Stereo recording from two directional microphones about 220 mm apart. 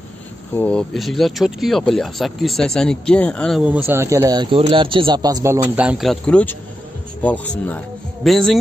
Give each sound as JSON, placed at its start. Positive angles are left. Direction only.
{"t": 0.6, "sound": "speech", "side_deg": 5}